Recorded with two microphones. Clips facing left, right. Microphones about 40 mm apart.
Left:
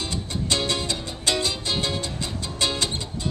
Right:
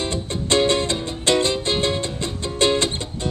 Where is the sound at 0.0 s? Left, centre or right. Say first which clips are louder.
Right 4 dB; right.